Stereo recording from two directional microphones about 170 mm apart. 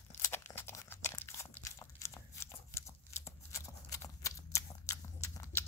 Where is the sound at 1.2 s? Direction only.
15° left (ahead or behind).